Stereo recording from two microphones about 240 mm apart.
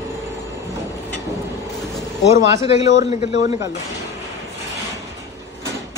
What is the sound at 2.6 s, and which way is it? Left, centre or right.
Speech, left.